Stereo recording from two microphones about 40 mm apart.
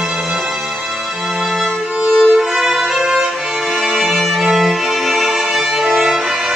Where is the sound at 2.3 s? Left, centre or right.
Centre.